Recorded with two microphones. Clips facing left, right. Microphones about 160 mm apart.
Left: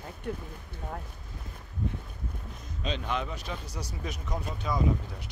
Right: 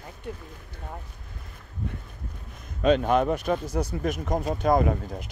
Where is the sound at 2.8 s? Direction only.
55° right (ahead or behind).